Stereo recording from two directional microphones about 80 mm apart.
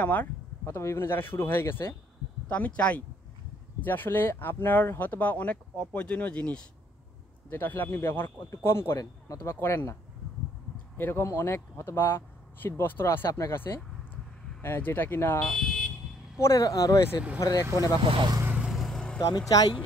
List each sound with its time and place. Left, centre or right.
0.0 s speech: left
0.7 s speech: left
2.4 s speech: centre
7.4 s speech: left
11.0 s speech: left
14.6 s speech: left
15.5 s car alarm: centre
16.3 s speech: left
18.0 s speech: right
18.6 s vehicle: centre
19.1 s speech: left